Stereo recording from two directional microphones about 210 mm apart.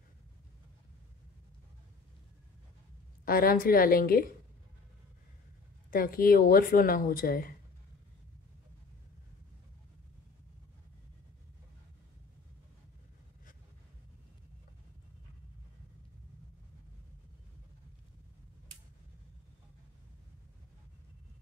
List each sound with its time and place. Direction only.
3.3 s speech: 45° left (ahead or behind)
5.9 s speech: 45° left (ahead or behind)